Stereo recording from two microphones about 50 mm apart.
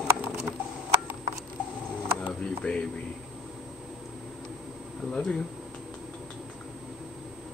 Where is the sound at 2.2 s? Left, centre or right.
Centre.